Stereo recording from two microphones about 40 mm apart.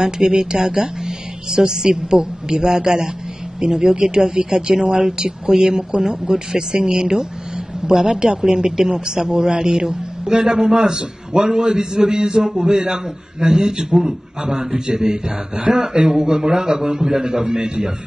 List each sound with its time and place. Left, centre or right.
0.0 s speech: centre